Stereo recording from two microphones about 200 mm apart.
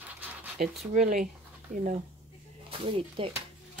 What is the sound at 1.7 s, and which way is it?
Speech, 35° right (ahead or behind).